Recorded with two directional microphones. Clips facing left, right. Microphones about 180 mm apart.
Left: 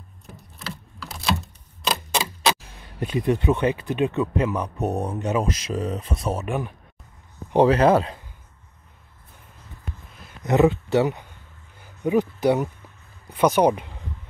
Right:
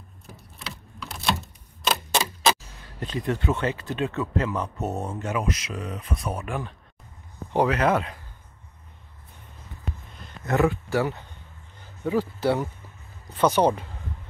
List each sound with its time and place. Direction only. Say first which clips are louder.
0.3 s a sound: left 3 dB; centre (ahead or behind)
3.0 s speech: left 5 dB; 15° left (ahead or behind)
5.4 s speech: left 4 dB; 30° left (ahead or behind)
7.5 s speech: left 5 dB; 30° left (ahead or behind)
10.4 s speech: left 4 dB; 20° left (ahead or behind)